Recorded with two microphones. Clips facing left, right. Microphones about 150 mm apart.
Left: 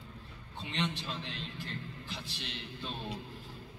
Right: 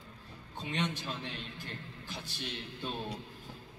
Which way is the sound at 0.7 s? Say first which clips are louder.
Right 1 dB; 50° right (ahead or behind).